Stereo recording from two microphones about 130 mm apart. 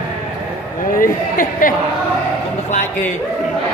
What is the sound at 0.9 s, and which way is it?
Speech, 90° left.